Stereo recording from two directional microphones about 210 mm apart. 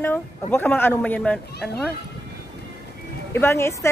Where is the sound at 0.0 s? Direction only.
10° left (ahead or behind).